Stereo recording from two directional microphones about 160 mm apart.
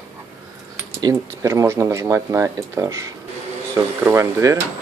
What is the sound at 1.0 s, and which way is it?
Speech, 20° right (ahead or behind).